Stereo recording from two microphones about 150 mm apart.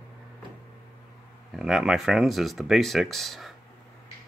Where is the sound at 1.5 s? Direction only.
Centre (ahead or behind).